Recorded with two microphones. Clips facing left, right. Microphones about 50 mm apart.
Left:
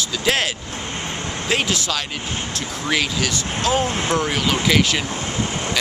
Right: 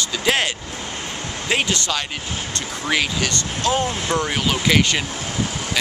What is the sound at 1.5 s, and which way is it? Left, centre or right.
Speech, centre.